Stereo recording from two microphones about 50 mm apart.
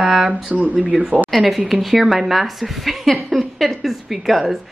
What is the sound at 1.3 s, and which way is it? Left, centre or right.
A woman's voice, centre.